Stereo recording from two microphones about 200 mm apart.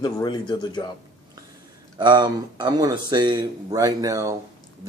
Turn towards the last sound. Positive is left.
turn(degrees=-15)  # may be behind; listen again after turning